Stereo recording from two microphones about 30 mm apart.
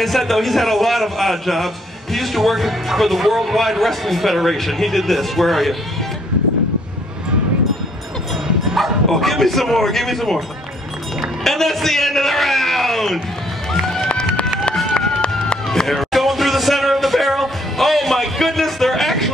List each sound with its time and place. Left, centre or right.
0.0 s speech: centre
9.1 s speech: centre
11.4 s a man's voice: centre
13.8 s run: centre
15.0 s a sound: left
15.9 s speech: centre